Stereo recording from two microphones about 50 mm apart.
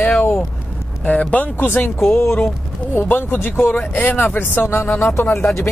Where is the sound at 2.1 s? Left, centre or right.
Left.